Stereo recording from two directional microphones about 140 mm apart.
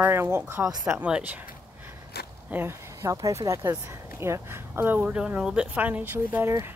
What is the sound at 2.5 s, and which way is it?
Speech, 20° right (ahead or behind).